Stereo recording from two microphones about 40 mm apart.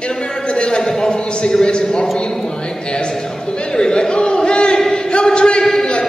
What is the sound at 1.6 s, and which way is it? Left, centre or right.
Speech, left.